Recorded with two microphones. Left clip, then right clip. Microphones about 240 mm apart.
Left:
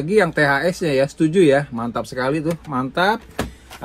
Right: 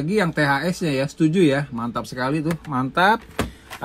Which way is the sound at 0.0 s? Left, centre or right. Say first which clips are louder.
Left 5 dB; centre.